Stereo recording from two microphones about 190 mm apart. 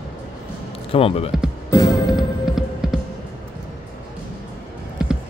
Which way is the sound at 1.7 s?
20° left (ahead or behind).